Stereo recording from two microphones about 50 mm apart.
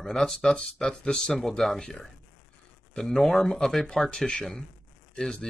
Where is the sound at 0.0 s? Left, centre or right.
Centre.